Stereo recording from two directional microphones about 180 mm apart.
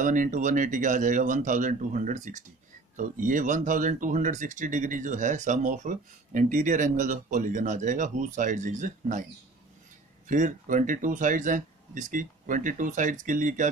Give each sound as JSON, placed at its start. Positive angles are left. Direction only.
{"t": 0.0, "sound": "speech", "side_deg": -45}
{"t": 10.2, "sound": "speech", "side_deg": -45}